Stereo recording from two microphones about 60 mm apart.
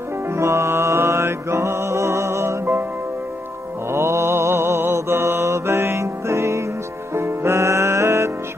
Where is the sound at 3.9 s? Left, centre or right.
Right.